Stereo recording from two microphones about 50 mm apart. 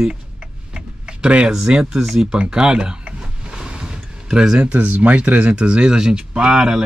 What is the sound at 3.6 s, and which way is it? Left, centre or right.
Vehicle, centre.